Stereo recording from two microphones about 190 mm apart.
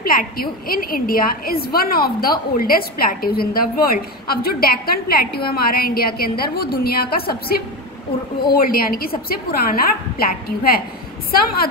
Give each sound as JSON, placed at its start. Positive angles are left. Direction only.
{"t": 0.0, "sound": "a woman's voice", "side_deg": 50}